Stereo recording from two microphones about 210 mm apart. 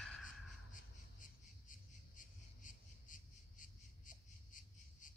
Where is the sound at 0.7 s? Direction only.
40° left (ahead or behind).